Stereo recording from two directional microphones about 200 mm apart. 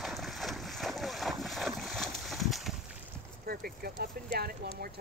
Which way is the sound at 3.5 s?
50° right (ahead or behind).